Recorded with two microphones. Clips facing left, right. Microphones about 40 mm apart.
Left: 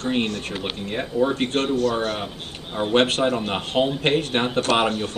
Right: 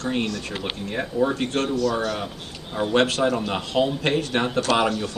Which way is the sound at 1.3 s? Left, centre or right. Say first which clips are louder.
Left 2 dB; left.